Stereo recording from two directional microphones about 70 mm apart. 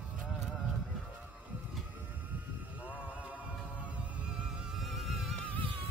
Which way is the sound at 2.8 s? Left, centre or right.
Right.